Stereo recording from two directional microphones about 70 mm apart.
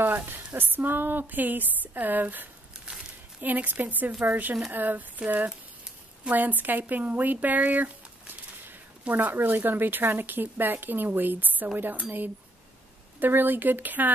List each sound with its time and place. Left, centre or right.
0.0 s speech: right
2.8 s a sound: centre
3.4 s speech: right
13.2 s speech: right